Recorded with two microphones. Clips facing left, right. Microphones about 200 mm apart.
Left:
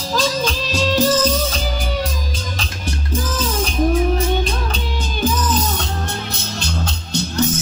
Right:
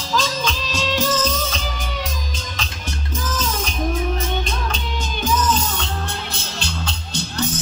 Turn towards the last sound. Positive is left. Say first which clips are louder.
# left 5 dB
turn(degrees=45)  # may be behind; listen again after turning